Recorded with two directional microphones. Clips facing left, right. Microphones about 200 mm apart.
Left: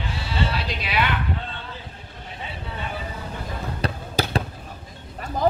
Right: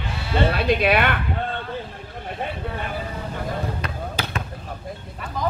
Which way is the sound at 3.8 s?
35° left (ahead or behind).